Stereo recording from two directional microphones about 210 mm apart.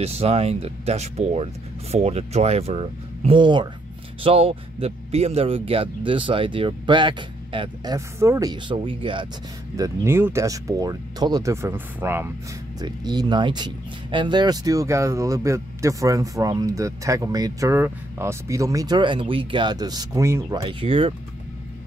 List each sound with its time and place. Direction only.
0.0 s speech: 30° right (ahead or behind)